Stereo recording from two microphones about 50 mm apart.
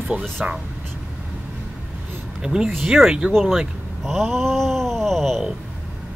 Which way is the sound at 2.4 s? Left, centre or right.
Centre.